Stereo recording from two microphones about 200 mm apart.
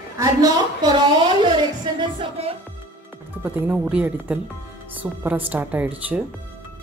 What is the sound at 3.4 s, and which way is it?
Speech, 5° right (ahead or behind).